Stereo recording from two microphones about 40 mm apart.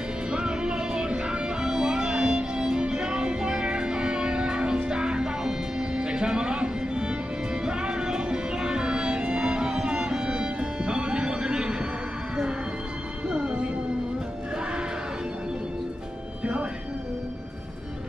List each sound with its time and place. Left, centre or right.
0.3 s music: right
13.3 s music: centre